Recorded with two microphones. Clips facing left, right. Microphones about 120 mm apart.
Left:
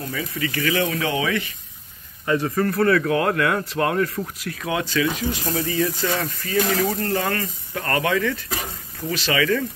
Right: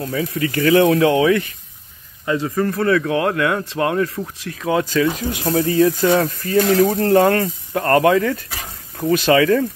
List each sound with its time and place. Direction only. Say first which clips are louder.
0.1 s speech: right 6 dB; 50° right (ahead or behind)
2.4 s speech: right 1 dB; 15° right (ahead or behind)
4.6 s speech: right 5 dB; 40° right (ahead or behind)
7.0 s speech: right 10 dB; 65° right (ahead or behind)
7.8 s speech: right 7 dB; 40° right (ahead or behind)